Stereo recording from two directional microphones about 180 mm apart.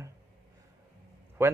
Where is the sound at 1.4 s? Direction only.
15° right (ahead or behind).